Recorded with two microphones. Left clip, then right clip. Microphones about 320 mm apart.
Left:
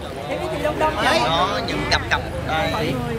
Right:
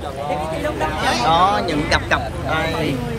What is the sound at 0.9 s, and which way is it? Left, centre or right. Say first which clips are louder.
Speech: left 1 dB; centre.